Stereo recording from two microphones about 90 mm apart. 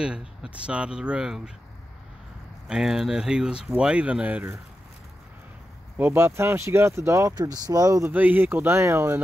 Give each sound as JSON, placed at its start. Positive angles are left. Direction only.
{"t": 0.0, "sound": "speech", "side_deg": -10}
{"t": 2.7, "sound": "speech", "side_deg": -5}
{"t": 5.9, "sound": "speech", "side_deg": -25}
{"t": 7.3, "sound": "speech", "side_deg": -45}
{"t": 8.1, "sound": "speech", "side_deg": -20}